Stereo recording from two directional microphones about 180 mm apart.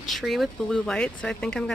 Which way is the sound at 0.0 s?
Centre (ahead or behind).